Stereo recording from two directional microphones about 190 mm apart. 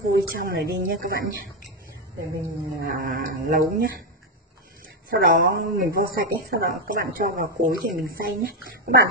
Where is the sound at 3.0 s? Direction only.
45° right (ahead or behind).